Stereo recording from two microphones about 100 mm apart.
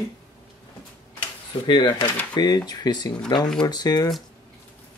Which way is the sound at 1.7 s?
50° left (ahead or behind).